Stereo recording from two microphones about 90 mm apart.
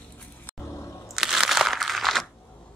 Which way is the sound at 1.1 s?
5° right (ahead or behind).